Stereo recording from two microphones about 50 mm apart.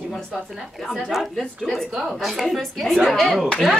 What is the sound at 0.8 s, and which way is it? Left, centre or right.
A woman's voice, centre.